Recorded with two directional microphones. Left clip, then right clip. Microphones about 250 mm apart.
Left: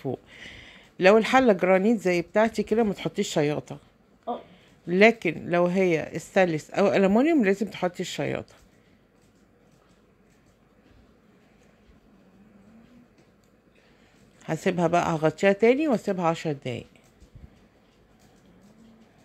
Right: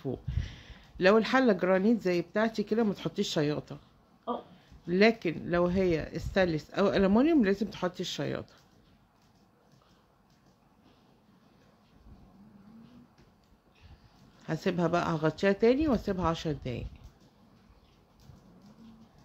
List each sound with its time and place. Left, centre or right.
0.0 s a woman's voice: centre
14.4 s a woman's voice: centre